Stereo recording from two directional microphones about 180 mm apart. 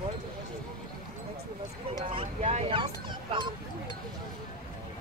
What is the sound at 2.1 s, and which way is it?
Speech, 35° right (ahead or behind).